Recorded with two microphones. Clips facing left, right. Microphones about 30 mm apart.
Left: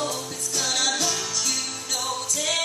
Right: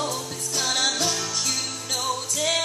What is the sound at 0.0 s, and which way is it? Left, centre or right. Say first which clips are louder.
Music: even; centre.